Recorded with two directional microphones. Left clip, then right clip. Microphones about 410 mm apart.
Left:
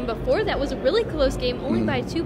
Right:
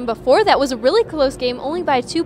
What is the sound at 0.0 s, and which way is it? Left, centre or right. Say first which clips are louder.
Speech: right 8 dB; right.